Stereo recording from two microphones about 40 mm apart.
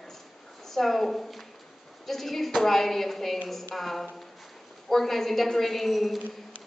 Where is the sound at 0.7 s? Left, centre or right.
Centre.